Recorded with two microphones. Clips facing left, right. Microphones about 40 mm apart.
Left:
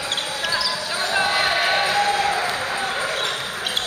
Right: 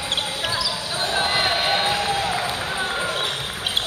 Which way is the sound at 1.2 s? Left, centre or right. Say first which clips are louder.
Left 1 dB; right.